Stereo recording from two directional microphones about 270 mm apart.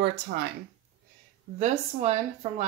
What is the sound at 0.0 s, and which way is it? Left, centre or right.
Speech, right.